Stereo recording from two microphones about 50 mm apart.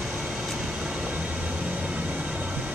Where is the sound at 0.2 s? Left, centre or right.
Centre.